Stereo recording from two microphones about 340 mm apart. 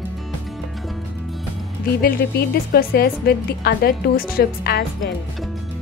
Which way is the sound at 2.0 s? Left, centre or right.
Left.